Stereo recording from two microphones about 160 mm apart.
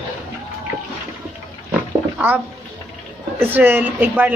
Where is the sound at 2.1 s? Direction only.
10° right (ahead or behind).